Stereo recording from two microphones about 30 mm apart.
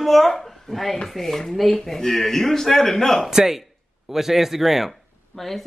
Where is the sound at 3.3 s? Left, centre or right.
Centre.